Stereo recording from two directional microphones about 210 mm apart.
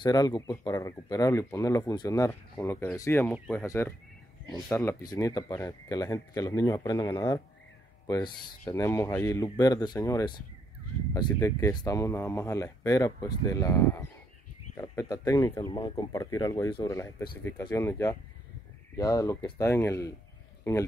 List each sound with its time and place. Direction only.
0.0 s speech: 15° left (ahead or behind)